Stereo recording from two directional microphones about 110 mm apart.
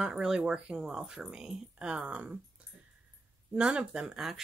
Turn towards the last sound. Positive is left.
turn(degrees=-5)  # may be behind; listen again after turning